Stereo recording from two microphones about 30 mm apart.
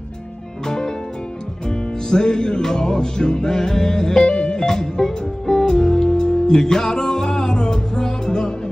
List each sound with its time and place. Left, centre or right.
0.7 s music: left